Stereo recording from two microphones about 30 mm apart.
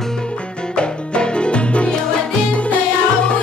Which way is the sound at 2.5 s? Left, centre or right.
Left.